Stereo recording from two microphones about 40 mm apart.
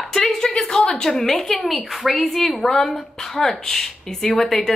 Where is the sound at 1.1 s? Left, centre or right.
Centre.